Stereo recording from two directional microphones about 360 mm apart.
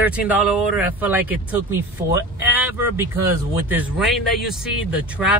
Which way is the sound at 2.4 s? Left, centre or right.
Centre.